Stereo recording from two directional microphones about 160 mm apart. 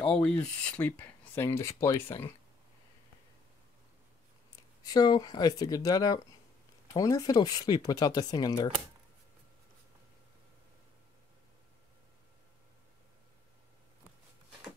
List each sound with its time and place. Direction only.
0.0 s speech: 5° left (ahead or behind)
4.8 s speech: 25° left (ahead or behind)